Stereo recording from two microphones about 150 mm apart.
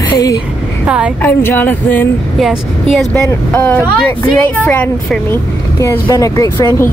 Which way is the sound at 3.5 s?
15° left (ahead or behind).